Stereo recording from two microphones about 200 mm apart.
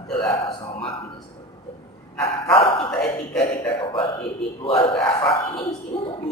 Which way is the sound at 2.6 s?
30° left (ahead or behind).